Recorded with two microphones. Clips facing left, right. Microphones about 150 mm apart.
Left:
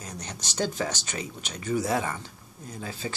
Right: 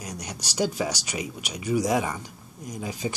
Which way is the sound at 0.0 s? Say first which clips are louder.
Right 3 dB; 10° right (ahead or behind).